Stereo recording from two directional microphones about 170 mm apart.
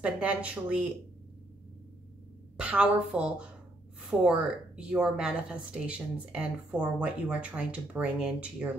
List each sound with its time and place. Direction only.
0.0 s a woman's voice: 10° right (ahead or behind)
2.5 s a woman's voice: 5° right (ahead or behind)